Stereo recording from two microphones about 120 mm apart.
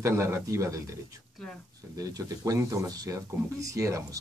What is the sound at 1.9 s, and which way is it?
Speech, 30° right (ahead or behind).